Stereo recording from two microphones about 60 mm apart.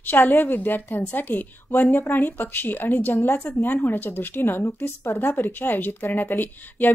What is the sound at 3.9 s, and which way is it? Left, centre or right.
Speech, left.